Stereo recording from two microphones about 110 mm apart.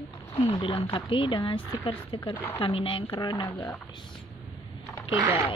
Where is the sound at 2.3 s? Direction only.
20° left (ahead or behind).